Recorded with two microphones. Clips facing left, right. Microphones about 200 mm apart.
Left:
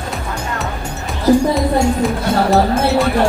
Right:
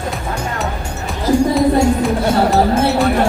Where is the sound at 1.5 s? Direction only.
Centre (ahead or behind).